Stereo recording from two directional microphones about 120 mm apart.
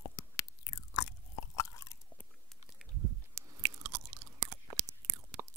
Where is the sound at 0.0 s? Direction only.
25° left (ahead or behind).